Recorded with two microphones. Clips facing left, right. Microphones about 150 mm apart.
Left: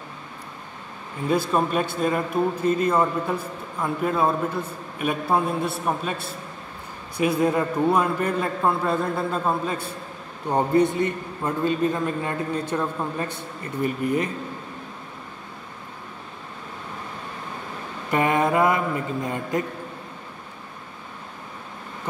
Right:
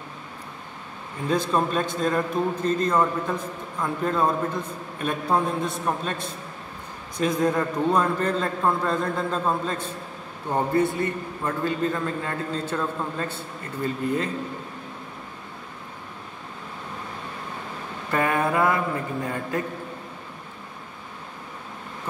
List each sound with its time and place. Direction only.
1.3 s a man's voice: 10° left (ahead or behind)
18.1 s speech: 20° left (ahead or behind)